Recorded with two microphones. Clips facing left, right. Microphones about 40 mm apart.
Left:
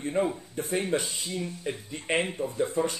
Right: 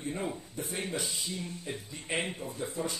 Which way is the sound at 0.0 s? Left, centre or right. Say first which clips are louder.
Left 8 dB; left.